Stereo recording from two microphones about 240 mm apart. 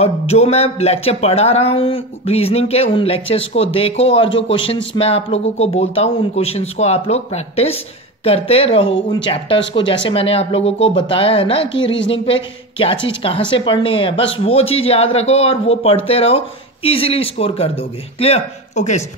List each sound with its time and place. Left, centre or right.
0.0 s speech: left